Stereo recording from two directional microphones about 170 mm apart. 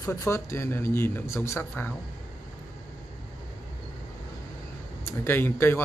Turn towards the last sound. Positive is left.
turn(degrees=15)  # may be behind; listen again after turning